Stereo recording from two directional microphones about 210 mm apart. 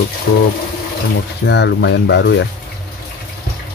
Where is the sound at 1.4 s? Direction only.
55° left (ahead or behind).